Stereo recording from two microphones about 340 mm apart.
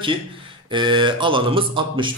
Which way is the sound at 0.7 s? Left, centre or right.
Centre.